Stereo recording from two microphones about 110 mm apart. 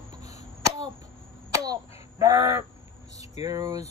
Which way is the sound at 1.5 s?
35° right (ahead or behind).